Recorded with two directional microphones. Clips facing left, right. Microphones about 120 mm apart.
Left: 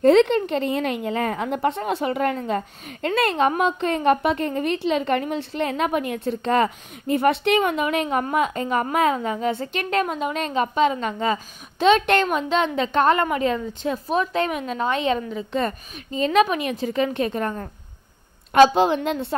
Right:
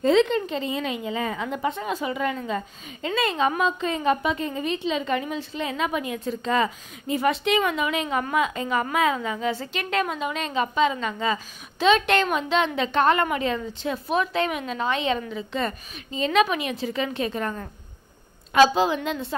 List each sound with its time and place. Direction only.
0.0 s a woman's voice: 60° left (ahead or behind); by 17.6 s 40° left (ahead or behind)
18.8 s a woman's voice: 55° left (ahead or behind)